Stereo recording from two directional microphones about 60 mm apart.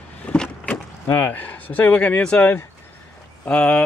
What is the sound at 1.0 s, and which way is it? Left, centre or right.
Speech, left.